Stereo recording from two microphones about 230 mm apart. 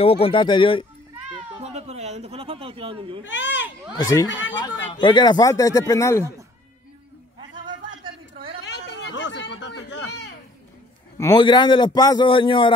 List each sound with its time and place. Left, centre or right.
0.0 s a man's voice: left
1.6 s speech: right
3.3 s speech: left
3.9 s speech: centre
4.3 s speech: left
5.0 s speech: centre
7.3 s a sound: right
8.6 s a sound: left
11.1 s a man's voice: centre